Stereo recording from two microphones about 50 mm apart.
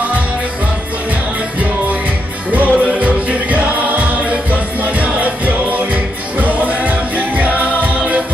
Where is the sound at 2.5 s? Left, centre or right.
Right.